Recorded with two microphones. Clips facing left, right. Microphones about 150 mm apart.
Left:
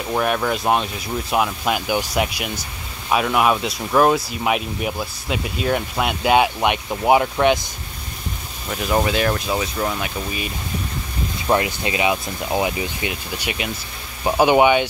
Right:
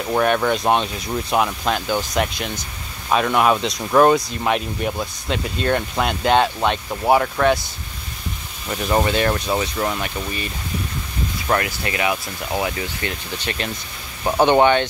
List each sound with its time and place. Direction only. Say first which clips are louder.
0.1 s speech: right 3 dB; centre (ahead or behind); by 7.6 s 20° left (ahead or behind)
8.6 s speech: right 1 dB; centre (ahead or behind)
11.4 s speech: left 2 dB; 20° left (ahead or behind)